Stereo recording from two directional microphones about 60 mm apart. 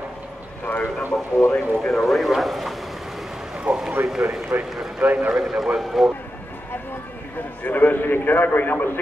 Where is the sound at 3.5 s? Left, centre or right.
Centre.